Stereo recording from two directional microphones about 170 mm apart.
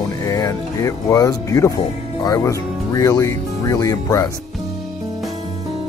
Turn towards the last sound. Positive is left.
turn(degrees=20)  # may be behind; listen again after turning